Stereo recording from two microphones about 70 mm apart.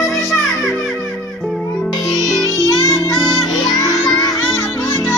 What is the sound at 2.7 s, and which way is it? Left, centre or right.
Music, left.